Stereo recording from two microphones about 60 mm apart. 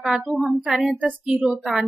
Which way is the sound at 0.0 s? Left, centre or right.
Centre.